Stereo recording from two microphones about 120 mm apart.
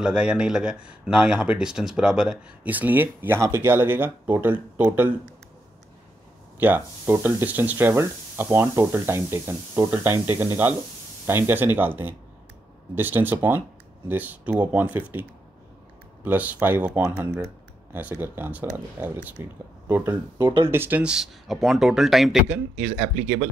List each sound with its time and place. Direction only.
0.0 s speech: 10° right (ahead or behind)
6.6 s speech: 15° right (ahead or behind)
16.3 s speech: 15° right (ahead or behind)
21.0 s speech: 5° right (ahead or behind)
22.5 s speech: 15° right (ahead or behind)